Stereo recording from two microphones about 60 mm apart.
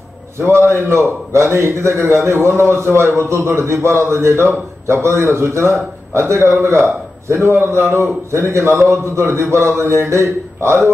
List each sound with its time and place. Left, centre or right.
0.4 s a man's voice: right